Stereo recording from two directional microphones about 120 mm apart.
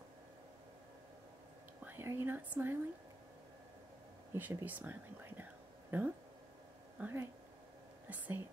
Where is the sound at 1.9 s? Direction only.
20° right (ahead or behind).